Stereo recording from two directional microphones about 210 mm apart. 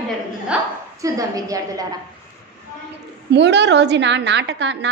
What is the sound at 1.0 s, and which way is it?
Speech, 15° right (ahead or behind).